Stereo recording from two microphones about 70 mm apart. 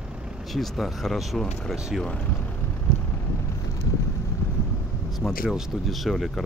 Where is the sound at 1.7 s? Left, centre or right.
Centre.